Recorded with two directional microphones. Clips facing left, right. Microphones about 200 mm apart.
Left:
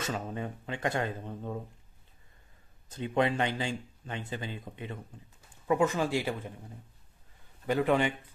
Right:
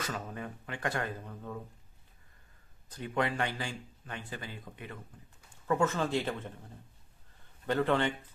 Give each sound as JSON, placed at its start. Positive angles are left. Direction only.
{"t": 0.0, "sound": "speech", "side_deg": 25}
{"t": 2.9, "sound": "speech", "side_deg": 25}
{"t": 7.6, "sound": "speech", "side_deg": 10}